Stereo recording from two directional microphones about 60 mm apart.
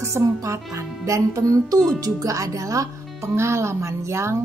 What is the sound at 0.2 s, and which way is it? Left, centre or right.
Speech, right.